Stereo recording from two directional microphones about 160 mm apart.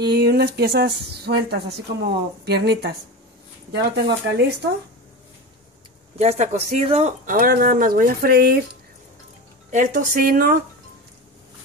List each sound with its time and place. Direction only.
0.0 s speech: 90° right
6.1 s speech: 45° right (ahead or behind)
7.2 s speech: 60° right (ahead or behind); by 8.6 s 75° right (ahead or behind)
9.7 s a woman's voice: 50° right (ahead or behind); by 10.6 s 65° right (ahead or behind)